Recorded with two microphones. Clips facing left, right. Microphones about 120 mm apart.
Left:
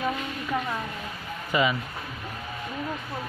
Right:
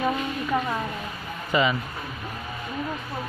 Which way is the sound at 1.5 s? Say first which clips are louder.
Right 2 dB; 10° left (ahead or behind).